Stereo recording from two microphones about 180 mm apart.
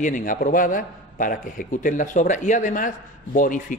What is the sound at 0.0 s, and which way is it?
A man's voice, 50° left (ahead or behind).